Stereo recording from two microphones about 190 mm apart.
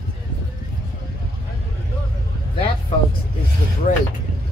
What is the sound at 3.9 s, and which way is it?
Speech, 45° left (ahead or behind).